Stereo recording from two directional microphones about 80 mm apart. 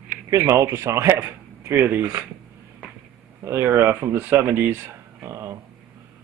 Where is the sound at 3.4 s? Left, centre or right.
Right.